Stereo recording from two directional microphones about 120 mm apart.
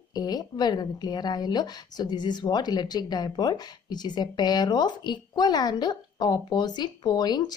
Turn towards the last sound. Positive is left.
turn(degrees=35)  # may be behind; listen again after turning